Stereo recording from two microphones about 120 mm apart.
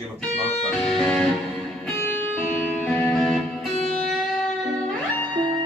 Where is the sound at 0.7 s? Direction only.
5° left (ahead or behind).